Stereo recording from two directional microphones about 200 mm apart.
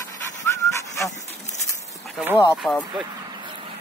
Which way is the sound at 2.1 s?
10° right (ahead or behind).